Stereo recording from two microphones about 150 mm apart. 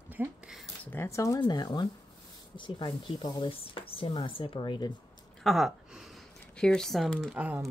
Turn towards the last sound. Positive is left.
turn(degrees=-5)  # may be behind; listen again after turning